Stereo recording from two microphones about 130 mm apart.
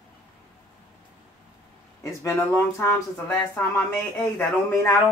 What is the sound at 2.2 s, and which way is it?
Speech, 20° left (ahead or behind).